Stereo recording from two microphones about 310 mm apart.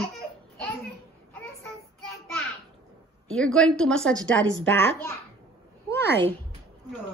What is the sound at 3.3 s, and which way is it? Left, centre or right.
A woman's voice, centre.